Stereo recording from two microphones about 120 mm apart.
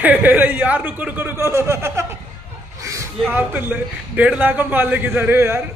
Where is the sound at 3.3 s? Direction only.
15° right (ahead or behind).